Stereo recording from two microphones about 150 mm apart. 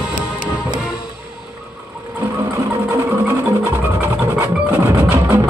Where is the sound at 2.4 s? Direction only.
20° right (ahead or behind).